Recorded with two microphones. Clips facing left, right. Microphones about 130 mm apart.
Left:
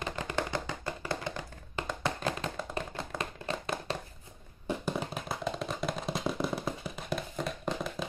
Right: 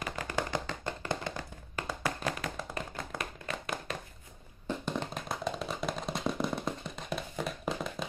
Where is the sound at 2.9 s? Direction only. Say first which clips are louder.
Left 2 dB; 30° left (ahead or behind).